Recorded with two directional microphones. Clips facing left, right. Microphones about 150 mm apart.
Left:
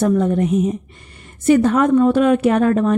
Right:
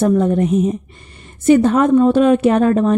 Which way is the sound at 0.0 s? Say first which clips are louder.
Right 2 dB; 30° right (ahead or behind).